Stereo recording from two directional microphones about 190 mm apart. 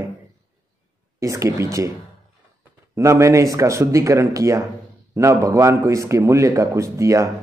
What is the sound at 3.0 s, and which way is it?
A man's voice, 15° right (ahead or behind).